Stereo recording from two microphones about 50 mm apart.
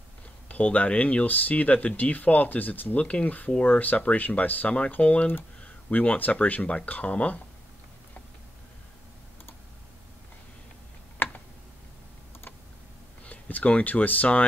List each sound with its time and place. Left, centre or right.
0.5 s speech: left
3.0 s speech: left
11.2 s a sound: left
13.2 s speech: left